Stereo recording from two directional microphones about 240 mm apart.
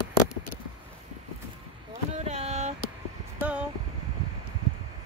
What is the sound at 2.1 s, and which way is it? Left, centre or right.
Vehicle, right.